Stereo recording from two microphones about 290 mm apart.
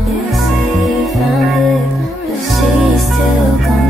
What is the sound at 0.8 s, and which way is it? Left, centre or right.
Music, centre.